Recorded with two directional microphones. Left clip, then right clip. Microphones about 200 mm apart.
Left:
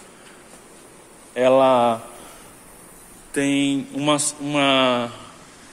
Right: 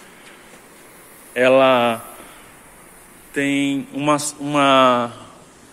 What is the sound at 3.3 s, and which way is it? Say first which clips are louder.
Speech: right 1 dB; 10° left (ahead or behind).